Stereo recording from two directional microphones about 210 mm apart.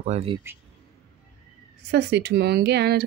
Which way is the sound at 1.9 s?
50° right (ahead or behind).